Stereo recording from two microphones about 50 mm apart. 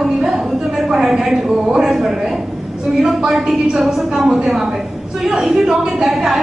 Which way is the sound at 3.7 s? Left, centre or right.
Centre.